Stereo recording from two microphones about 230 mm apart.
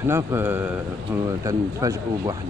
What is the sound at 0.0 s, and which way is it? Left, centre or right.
Speech, centre.